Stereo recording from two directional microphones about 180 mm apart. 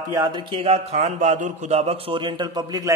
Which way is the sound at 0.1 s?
20° right (ahead or behind).